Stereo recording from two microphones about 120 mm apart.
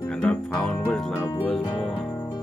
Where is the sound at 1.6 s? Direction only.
45° left (ahead or behind).